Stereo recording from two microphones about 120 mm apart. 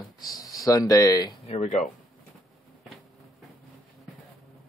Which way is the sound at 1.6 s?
85° left.